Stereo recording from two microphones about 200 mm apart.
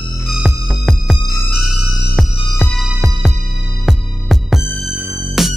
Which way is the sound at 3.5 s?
75° right (ahead or behind).